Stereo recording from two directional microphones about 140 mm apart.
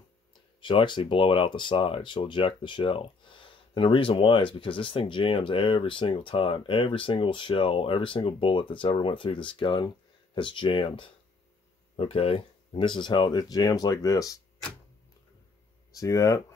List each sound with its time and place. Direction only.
0.6 s speech: 35° left (ahead or behind)
15.9 s speech: 25° left (ahead or behind)